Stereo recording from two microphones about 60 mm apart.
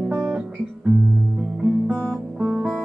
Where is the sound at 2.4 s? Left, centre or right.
Centre.